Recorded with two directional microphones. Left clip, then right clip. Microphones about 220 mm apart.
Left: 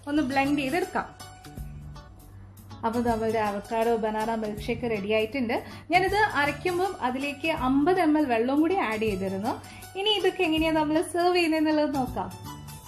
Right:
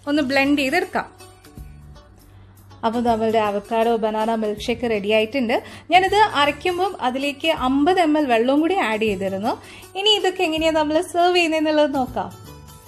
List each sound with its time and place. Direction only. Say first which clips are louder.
0.0 s a woman's voice: right 7 dB; 45° right (ahead or behind)
2.8 s music: right 7 dB; 35° right (ahead or behind)